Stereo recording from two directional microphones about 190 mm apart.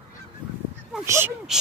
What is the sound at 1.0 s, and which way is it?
Speech, 15° right (ahead or behind).